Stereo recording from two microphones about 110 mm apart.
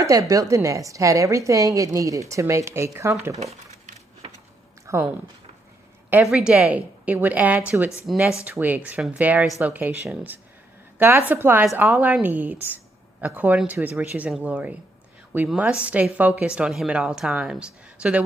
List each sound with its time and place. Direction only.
0.0 s a woman's voice: 30° right (ahead or behind)
4.9 s speech: 25° right (ahead or behind)
6.2 s speech: 5° right (ahead or behind)
8.1 s speech: centre (ahead or behind)
8.5 s speech: 15° right (ahead or behind)
11.0 s a woman's voice: 20° right (ahead or behind)